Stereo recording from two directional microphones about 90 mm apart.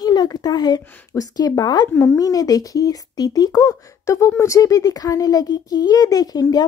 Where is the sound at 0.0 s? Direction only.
50° left (ahead or behind).